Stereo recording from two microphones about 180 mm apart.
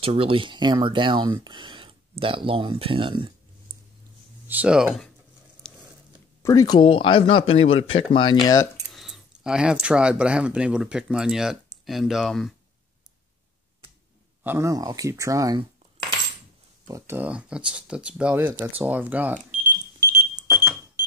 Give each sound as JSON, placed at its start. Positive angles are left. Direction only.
{"t": 0.0, "sound": "speech", "side_deg": -30}
{"t": 4.5, "sound": "speech", "side_deg": -5}
{"t": 5.6, "sound": "a sound", "side_deg": 5}
{"t": 6.4, "sound": "speech", "side_deg": 20}
{"t": 8.9, "sound": "speech", "side_deg": 0}
{"t": 14.4, "sound": "speech", "side_deg": -15}
{"t": 16.8, "sound": "speech", "side_deg": -15}
{"t": 20.1, "sound": "alarm", "side_deg": -10}